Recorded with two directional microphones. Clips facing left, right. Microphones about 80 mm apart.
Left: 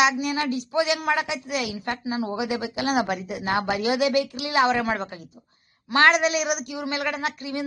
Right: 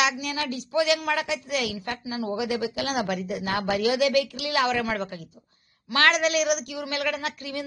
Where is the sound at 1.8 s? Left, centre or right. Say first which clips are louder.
Left 3 dB; left.